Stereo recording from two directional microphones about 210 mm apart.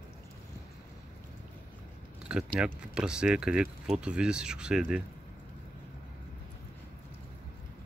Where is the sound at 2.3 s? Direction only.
5° right (ahead or behind).